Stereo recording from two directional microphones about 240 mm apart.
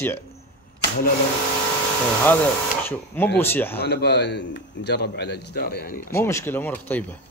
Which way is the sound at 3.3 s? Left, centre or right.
Centre.